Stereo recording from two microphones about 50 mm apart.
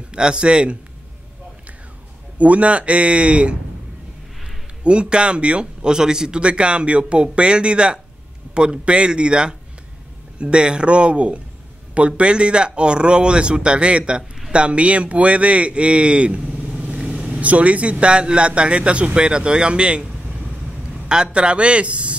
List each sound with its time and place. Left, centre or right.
0.1 s speech: centre
2.3 s speech: right
4.8 s a man's voice: right